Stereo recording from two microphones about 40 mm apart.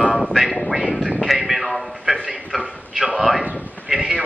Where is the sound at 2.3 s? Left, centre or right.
Right.